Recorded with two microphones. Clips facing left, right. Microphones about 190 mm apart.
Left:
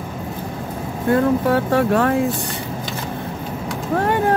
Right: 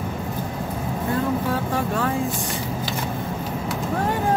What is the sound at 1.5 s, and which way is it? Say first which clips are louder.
Speech: left 7 dB; 65° left (ahead or behind).